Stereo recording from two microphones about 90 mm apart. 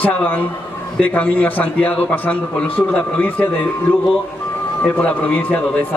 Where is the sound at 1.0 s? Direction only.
20° left (ahead or behind).